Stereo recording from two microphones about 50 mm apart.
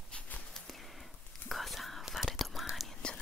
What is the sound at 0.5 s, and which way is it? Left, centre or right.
Whispering, centre.